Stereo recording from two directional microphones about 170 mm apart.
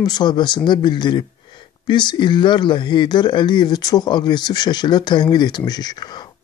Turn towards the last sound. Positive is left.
turn(degrees=25)  # may be behind; listen again after turning